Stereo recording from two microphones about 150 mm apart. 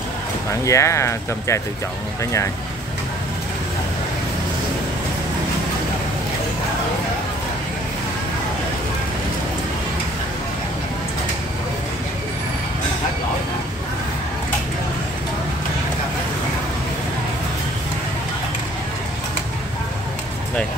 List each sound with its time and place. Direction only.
0.7 s speech: 20° left (ahead or behind)